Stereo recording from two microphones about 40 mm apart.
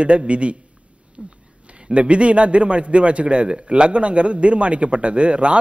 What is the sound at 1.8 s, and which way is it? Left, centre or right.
A man's voice, right.